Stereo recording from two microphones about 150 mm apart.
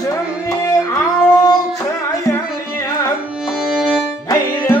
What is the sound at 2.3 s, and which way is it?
Carnatic music, 20° left (ahead or behind).